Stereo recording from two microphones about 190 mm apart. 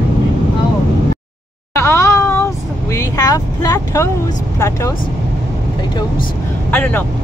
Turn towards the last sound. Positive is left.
turn(degrees=10)  # may be behind; listen again after turning